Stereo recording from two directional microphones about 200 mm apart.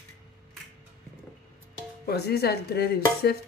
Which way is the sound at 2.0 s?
55° left (ahead or behind).